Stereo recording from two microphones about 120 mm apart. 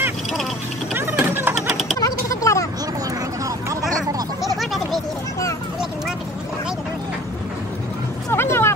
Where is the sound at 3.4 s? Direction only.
25° right (ahead or behind).